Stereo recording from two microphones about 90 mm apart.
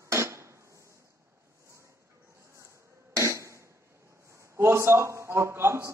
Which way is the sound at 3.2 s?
30° right (ahead or behind).